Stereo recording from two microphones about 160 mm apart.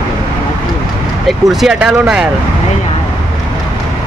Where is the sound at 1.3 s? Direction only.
Centre (ahead or behind).